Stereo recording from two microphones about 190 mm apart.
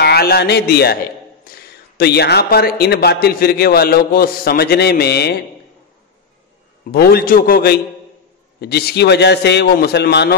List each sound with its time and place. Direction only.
0.0 s a man's voice: 55° left (ahead or behind)
6.9 s a man's voice: 55° left (ahead or behind)